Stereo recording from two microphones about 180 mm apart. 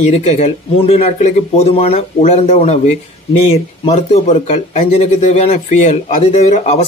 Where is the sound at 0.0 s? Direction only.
35° left (ahead or behind).